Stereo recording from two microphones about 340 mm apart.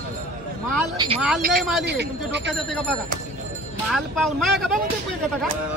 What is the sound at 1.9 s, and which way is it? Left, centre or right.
Speech, right.